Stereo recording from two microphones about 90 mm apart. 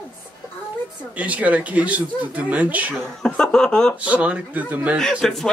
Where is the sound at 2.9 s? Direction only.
5° left (ahead or behind).